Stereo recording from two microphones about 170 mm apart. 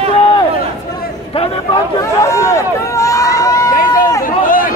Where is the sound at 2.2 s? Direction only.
20° left (ahead or behind).